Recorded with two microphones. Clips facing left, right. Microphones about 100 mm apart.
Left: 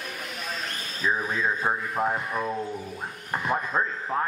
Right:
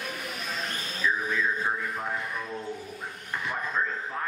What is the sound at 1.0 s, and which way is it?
Speech, 40° left (ahead or behind).